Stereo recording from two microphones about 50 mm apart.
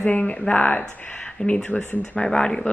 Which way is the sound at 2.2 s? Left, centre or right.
Centre.